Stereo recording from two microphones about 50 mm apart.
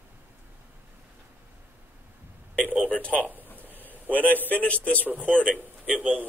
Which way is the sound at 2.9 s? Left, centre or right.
Left.